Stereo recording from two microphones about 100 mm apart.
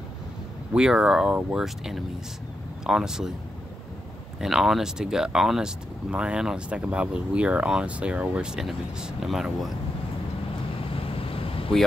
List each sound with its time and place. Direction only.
0.7 s speech: 5° right (ahead or behind)
4.4 s speech: 5° right (ahead or behind)
11.0 s vehicle: 70° left (ahead or behind)